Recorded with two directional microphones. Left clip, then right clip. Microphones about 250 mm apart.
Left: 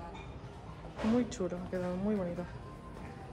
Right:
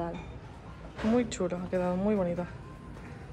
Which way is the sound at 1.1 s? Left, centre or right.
Centre.